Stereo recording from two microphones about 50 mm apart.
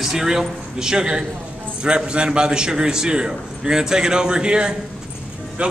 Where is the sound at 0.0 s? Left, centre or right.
Centre.